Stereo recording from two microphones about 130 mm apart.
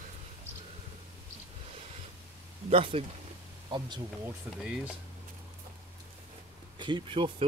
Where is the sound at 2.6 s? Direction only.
45° right (ahead or behind).